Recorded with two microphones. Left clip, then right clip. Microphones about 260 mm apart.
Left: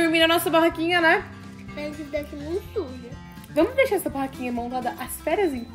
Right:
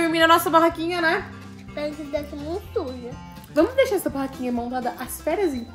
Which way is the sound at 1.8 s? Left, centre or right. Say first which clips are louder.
Right 4 dB; right.